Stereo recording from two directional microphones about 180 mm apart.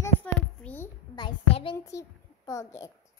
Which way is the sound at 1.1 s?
25° left (ahead or behind).